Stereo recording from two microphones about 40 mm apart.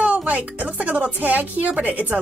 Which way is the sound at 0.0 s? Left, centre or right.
Right.